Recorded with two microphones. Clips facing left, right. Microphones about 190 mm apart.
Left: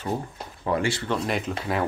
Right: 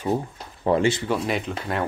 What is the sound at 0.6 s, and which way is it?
Speech, 25° right (ahead or behind).